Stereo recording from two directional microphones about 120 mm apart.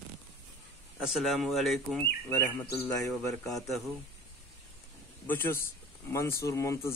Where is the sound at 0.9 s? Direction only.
5° right (ahead or behind).